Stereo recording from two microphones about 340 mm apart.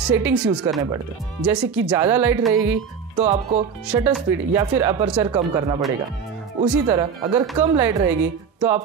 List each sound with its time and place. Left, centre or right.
0.2 s speech: centre
3.2 s speech: centre
3.8 s speech: centre